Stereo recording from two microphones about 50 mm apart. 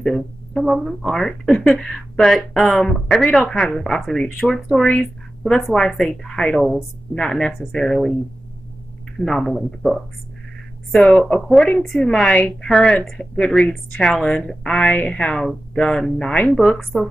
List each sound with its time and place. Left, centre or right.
0.6 s speech: centre
3.1 s speech: centre
9.2 s speech: centre
15.4 s speech: centre